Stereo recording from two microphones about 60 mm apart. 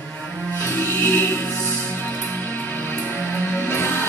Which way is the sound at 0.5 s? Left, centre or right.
Left.